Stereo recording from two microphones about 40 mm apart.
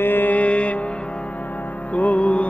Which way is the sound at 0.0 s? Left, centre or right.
Left.